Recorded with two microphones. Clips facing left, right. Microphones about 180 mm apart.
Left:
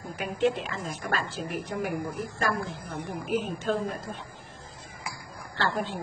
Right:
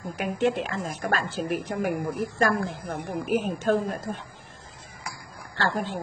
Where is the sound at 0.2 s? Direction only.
55° right (ahead or behind).